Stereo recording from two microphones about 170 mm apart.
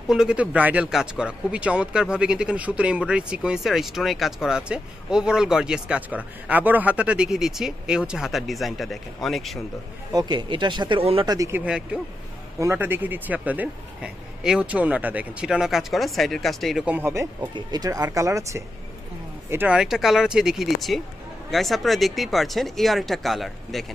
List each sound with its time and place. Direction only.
0.1 s speech: 5° right (ahead or behind)
10.1 s speech: 25° right (ahead or behind)
11.3 s speech: 15° right (ahead or behind)
19.5 s speech: 10° right (ahead or behind)